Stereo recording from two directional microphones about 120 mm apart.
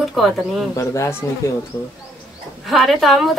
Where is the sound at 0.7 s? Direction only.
25° left (ahead or behind).